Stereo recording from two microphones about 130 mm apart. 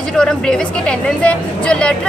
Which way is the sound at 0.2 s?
5° left (ahead or behind).